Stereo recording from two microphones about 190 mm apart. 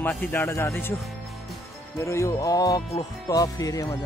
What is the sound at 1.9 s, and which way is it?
Speech, 15° left (ahead or behind).